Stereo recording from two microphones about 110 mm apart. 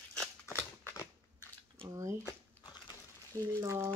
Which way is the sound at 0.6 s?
20° left (ahead or behind).